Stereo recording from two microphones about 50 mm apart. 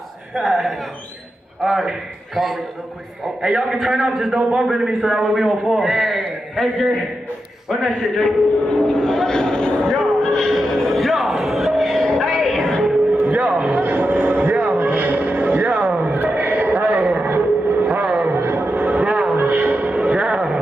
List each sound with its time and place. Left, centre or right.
0.3 s a man's voice: centre
3.8 s a man's voice: centre
4.4 s a man's voice: centre
9.9 s music: centre
13.2 s a sound: right
17.1 s vehicle: right
17.8 s a sound: right
18.3 s music: right
19.3 s music: right; by 20.5 s centre